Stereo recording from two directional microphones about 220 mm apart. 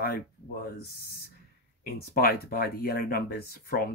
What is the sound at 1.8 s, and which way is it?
Speech, 45° left (ahead or behind).